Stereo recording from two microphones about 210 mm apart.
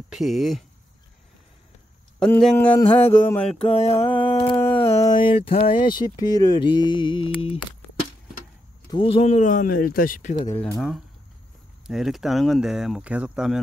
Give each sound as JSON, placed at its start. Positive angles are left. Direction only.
{"t": 0.1, "sound": "speech", "side_deg": 0}
{"t": 2.1, "sound": "speech", "side_deg": 5}
{"t": 3.1, "sound": "a sound", "side_deg": 10}
{"t": 3.4, "sound": "speech", "side_deg": 30}
{"t": 4.2, "sound": "a sound", "side_deg": 25}
{"t": 5.9, "sound": "speech", "side_deg": 20}
{"t": 8.9, "sound": "speech", "side_deg": 25}
{"t": 10.5, "sound": "a sound", "side_deg": 10}
{"t": 11.9, "sound": "speech", "side_deg": 0}